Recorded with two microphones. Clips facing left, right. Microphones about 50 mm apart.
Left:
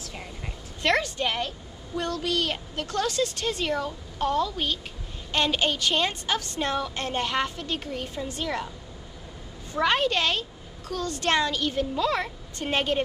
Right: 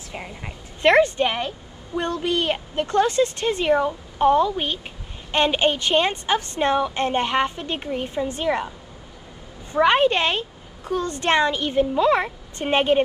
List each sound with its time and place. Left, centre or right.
0.1 s a woman's voice: right
9.7 s a woman's voice: right